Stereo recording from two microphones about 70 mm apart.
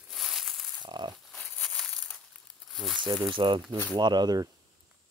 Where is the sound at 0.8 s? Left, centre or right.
Right.